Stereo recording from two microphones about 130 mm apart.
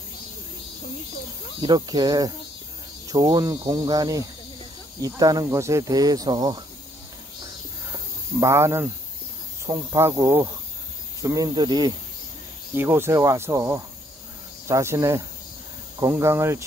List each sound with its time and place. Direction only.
1.6 s speech: 35° right (ahead or behind)
7.9 s snake: 25° right (ahead or behind)
9.7 s speech: 20° right (ahead or behind)
12.7 s speech: 15° right (ahead or behind)